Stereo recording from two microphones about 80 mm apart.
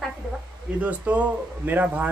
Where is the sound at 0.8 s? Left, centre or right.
Centre.